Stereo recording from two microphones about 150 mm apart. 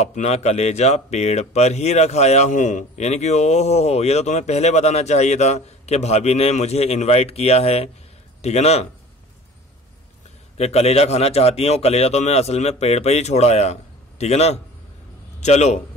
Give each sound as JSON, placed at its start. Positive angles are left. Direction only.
{"t": 0.0, "sound": "speech", "side_deg": 50}
{"t": 10.6, "sound": "speech", "side_deg": 45}